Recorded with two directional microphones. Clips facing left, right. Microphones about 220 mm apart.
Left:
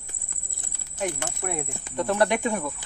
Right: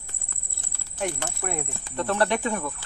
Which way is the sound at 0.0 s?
15° left (ahead or behind).